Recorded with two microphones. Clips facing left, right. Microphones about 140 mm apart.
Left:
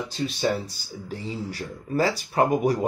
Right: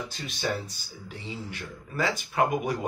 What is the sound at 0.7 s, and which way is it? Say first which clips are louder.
Speech: left 8 dB; 35° left (ahead or behind).